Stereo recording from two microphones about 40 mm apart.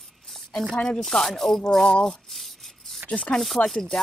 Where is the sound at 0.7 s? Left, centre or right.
Left.